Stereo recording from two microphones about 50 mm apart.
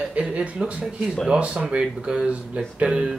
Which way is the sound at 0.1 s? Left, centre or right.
Right.